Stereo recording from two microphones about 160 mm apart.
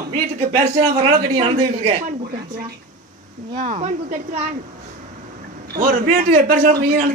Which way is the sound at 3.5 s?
50° right (ahead or behind).